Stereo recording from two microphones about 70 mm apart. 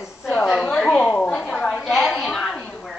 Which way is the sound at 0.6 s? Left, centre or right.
Centre.